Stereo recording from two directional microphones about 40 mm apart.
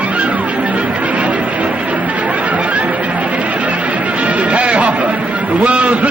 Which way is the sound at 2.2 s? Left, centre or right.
Right.